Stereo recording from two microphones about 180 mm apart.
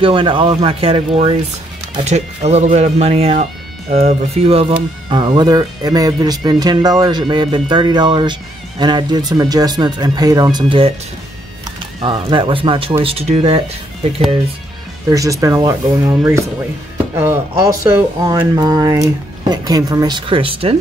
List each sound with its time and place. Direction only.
0.0 s speech: 25° right (ahead or behind)
12.0 s speech: 25° right (ahead or behind)
15.0 s speech: 20° right (ahead or behind)